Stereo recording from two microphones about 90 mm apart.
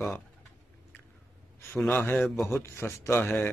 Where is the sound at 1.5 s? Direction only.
20° left (ahead or behind).